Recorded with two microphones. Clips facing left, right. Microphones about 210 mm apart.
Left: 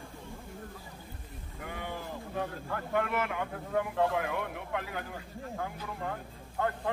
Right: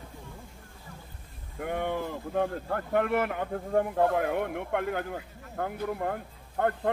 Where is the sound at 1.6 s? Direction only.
55° right (ahead or behind).